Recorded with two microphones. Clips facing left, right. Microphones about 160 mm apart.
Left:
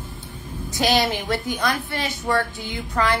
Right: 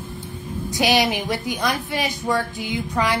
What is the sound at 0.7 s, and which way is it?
A woman's voice, 15° right (ahead or behind).